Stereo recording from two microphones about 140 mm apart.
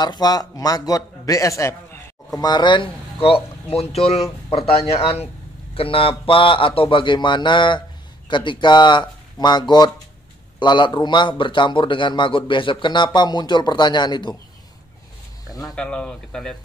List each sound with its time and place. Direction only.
0.0 s a man's voice: 30° left (ahead or behind)
15.6 s speech: 5° left (ahead or behind)